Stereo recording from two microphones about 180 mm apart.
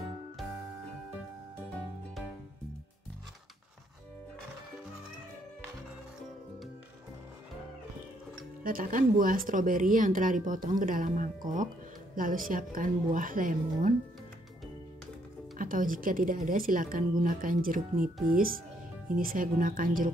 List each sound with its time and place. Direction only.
8.6 s speech: 50° right (ahead or behind)
15.5 s speech: 50° right (ahead or behind)